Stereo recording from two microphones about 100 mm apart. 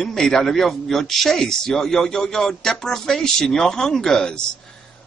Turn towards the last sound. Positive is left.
turn(degrees=5)  # may be behind; listen again after turning